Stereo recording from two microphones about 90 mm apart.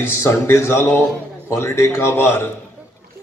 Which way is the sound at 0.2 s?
30° left (ahead or behind).